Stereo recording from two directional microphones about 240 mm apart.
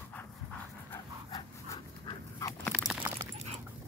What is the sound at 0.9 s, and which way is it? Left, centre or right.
Dog, centre.